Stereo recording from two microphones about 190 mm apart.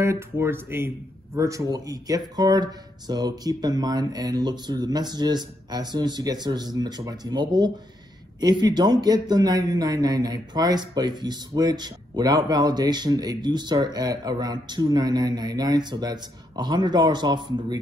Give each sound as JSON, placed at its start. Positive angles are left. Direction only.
{"t": 0.0, "sound": "speech", "side_deg": -15}